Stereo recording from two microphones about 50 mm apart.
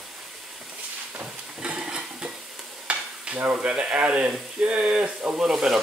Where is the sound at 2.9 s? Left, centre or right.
Right.